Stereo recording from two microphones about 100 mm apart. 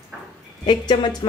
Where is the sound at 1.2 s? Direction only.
50° left (ahead or behind).